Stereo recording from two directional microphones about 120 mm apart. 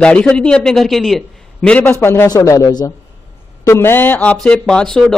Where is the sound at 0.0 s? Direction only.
10° left (ahead or behind).